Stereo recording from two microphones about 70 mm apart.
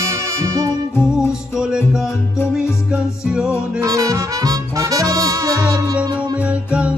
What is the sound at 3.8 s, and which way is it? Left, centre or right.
Music, right.